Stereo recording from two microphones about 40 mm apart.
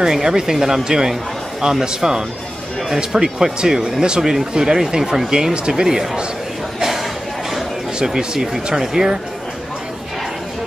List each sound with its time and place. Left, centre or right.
0.0 s speech: centre
8.0 s speech: centre